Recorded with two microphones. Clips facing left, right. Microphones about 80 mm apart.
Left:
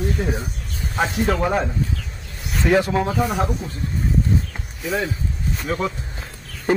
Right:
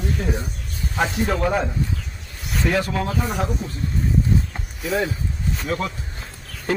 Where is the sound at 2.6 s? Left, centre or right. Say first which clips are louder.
Left 4 dB; left.